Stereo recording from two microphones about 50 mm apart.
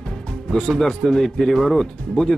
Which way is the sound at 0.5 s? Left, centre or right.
Centre.